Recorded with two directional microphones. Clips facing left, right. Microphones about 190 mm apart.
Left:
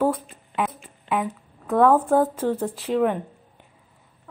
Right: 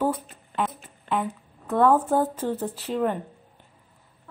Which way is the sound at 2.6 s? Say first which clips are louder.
Left 4 dB; 5° left (ahead or behind).